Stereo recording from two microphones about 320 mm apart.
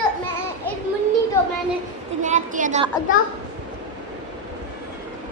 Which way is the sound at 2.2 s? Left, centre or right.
Right.